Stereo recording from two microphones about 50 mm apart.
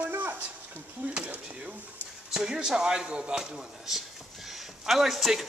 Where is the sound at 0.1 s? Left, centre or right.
Right.